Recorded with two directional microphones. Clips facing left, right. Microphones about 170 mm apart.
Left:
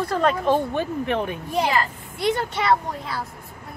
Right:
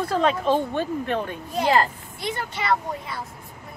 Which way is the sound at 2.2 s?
75° left (ahead or behind).